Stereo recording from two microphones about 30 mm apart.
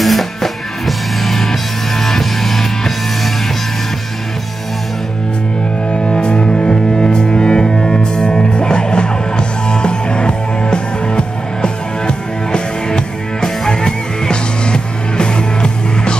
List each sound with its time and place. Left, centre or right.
0.0 s music: centre
5.9 s music: left